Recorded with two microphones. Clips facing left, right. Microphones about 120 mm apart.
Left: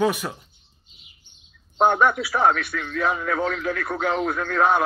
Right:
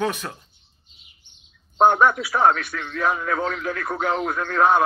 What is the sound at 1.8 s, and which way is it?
Speech, 40° right (ahead or behind).